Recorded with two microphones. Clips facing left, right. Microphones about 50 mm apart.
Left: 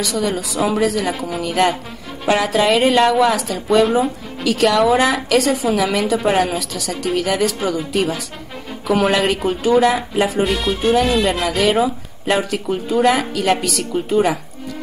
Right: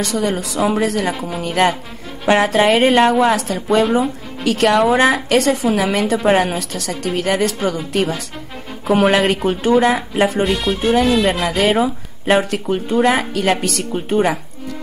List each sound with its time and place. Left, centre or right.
0.0 s a woman's voice: right
10.4 s music: centre
10.8 s speech: right
11.5 s a woman's voice: right
13.0 s a woman's voice: right